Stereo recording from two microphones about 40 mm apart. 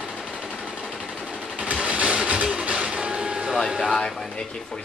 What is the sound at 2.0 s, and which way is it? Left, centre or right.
Vehicle, right.